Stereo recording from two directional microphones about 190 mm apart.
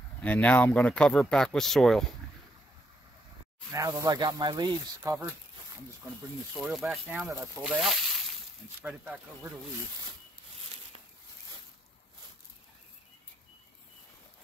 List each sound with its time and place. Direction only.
0.2 s speech: 10° left (ahead or behind)
3.7 s speech: 15° right (ahead or behind)
6.6 s speech: centre (ahead or behind)